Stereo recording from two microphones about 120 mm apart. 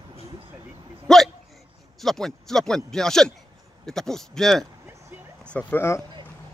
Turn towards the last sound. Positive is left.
turn(degrees=20)  # may be behind; listen again after turning